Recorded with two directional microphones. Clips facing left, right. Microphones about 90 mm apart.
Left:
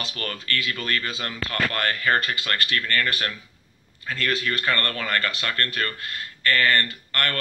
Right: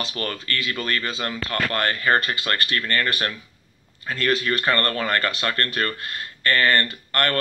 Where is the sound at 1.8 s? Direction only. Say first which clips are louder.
Right 3 dB; 25° right (ahead or behind).